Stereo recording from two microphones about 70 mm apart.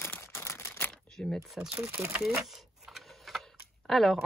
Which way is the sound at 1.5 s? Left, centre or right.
Right.